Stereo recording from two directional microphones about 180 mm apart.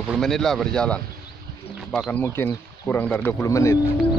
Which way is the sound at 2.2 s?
10° left (ahead or behind).